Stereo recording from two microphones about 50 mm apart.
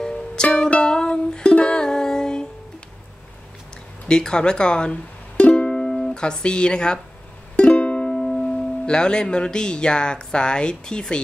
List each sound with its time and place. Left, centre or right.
0.0 s music: centre
4.1 s speech: centre
5.4 s music: left
7.5 s speech: left